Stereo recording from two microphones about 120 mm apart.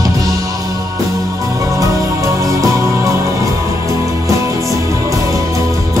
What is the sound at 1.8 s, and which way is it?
Music, 25° right (ahead or behind).